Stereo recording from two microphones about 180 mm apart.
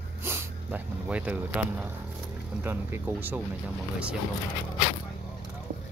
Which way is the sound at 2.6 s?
10° right (ahead or behind).